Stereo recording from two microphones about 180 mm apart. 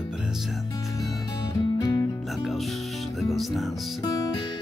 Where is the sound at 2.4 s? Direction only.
Centre (ahead or behind).